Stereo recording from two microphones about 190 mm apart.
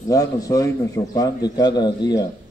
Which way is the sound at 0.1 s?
20° left (ahead or behind).